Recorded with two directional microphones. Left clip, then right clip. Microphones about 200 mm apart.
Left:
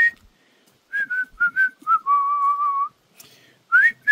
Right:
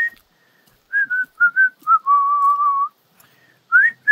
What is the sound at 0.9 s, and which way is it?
Whistling, 45° left (ahead or behind).